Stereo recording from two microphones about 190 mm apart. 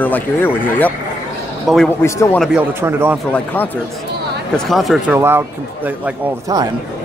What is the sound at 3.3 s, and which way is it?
Speech, 10° left (ahead or behind).